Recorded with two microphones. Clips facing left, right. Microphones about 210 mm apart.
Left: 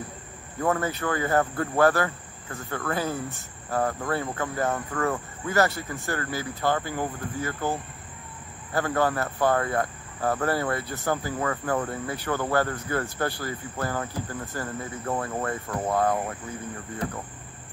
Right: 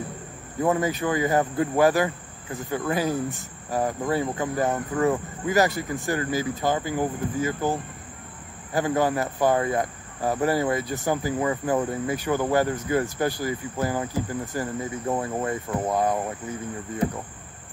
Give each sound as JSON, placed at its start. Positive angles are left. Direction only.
{"t": 0.6, "sound": "cricket", "side_deg": -15}